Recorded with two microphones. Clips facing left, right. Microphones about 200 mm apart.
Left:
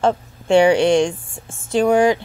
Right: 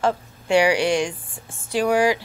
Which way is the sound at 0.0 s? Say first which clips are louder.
Left 4 dB; 25° left (ahead or behind).